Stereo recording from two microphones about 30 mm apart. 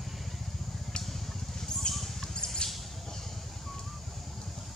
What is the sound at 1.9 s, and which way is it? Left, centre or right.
Basketball bounce, centre.